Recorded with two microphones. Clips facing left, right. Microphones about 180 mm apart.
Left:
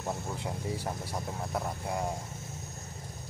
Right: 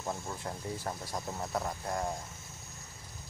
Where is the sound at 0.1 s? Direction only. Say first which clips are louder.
Left 2 dB; 15° left (ahead or behind).